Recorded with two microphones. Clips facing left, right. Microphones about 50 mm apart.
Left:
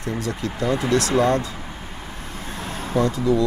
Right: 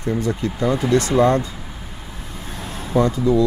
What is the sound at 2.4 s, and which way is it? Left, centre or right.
Vehicle, centre.